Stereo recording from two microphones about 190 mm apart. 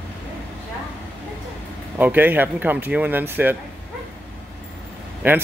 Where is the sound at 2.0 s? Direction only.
10° right (ahead or behind).